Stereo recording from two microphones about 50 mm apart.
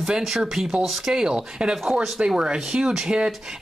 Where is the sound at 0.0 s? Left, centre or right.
Centre.